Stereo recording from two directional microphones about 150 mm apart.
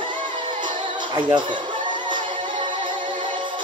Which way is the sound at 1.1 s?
30° right (ahead or behind).